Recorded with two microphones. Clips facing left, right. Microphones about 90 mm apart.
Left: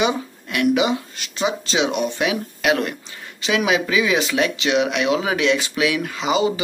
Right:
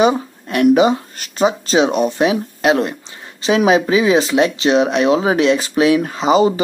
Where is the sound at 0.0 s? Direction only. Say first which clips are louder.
Right 7 dB; 40° right (ahead or behind).